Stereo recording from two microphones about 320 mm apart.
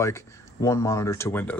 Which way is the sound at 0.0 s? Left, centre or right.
Centre.